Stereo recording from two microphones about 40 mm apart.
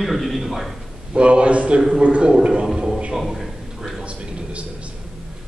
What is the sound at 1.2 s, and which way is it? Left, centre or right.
A man's voice, right.